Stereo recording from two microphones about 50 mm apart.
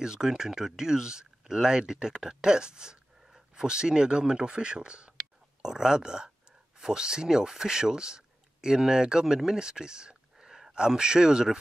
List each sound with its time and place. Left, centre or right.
0.0 s speech: centre